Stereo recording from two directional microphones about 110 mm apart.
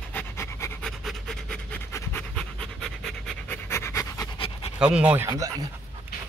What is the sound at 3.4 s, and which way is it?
Pant, 20° left (ahead or behind).